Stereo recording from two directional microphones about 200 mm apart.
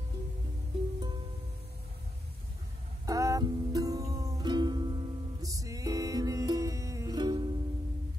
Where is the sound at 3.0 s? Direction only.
15° right (ahead or behind).